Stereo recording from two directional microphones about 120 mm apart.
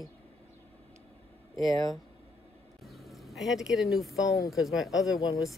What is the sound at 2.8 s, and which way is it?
Speech, centre (ahead or behind).